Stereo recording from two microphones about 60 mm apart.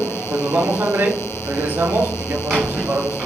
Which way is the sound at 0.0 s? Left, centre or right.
Left.